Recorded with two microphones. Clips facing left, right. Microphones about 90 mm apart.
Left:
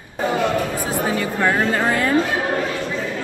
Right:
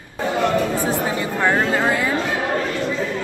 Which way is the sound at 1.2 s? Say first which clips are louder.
Even; 15° right (ahead or behind).